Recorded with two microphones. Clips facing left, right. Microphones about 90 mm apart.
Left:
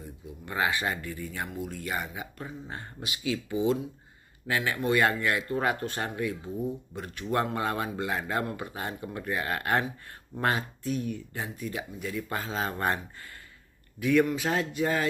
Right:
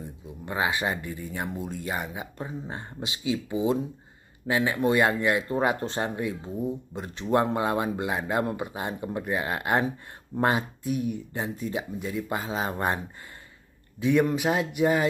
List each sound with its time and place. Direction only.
0.0 s a man's voice: 20° right (ahead or behind)